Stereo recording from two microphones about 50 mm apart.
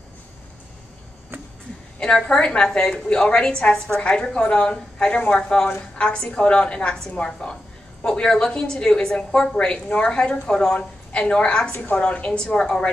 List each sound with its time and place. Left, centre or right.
2.0 s a woman's voice: centre
11.7 s a woman's voice: left
12.0 s a woman's voice: left